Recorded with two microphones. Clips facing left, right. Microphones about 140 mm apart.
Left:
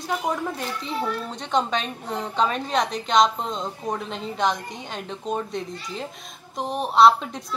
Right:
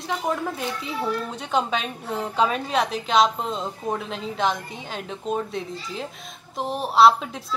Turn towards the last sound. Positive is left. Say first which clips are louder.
# even
turn(degrees=-5)  # may be behind; listen again after turning